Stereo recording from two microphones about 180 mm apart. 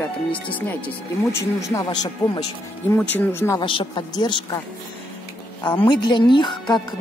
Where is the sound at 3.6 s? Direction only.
25° left (ahead or behind).